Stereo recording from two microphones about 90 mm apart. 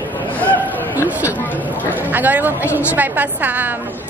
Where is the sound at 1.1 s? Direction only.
20° right (ahead or behind).